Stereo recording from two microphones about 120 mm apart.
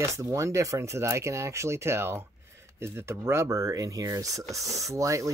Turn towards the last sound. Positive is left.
turn(degrees=-25)  # may be behind; listen again after turning